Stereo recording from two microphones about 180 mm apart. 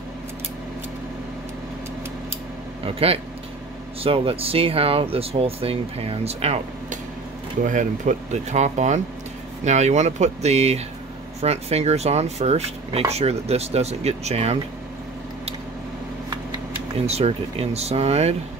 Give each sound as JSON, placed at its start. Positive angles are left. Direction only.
{"t": 2.8, "sound": "speech", "side_deg": -30}
{"t": 17.0, "sound": "speech", "side_deg": -35}